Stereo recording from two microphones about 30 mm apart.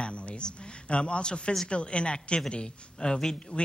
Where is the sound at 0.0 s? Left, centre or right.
Left.